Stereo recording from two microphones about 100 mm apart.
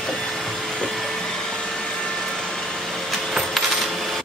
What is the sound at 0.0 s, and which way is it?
Vacuum cleaner, centre (ahead or behind).